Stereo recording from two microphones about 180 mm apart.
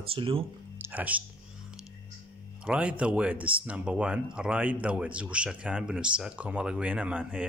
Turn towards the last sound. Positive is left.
turn(degrees=-5)  # may be behind; listen again after turning